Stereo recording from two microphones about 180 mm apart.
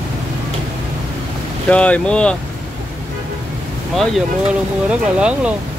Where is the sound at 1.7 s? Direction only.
5° left (ahead or behind).